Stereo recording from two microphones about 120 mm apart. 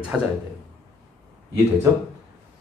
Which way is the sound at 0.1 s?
Centre (ahead or behind).